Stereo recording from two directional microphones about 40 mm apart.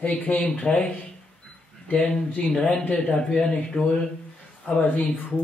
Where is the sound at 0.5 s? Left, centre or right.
Left.